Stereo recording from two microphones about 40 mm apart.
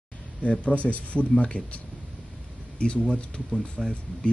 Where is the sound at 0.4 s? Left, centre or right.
Left.